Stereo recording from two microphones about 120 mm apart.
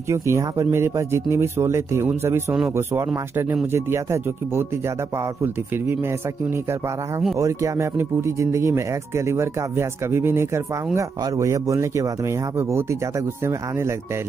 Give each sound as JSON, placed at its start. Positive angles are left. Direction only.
{"t": 0.1, "sound": "speech", "side_deg": -25}